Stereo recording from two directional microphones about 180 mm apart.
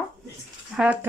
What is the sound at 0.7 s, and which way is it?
Speech, 5° right (ahead or behind).